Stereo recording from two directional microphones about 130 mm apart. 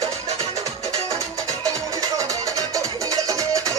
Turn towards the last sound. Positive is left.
turn(degrees=-25)  # may be behind; listen again after turning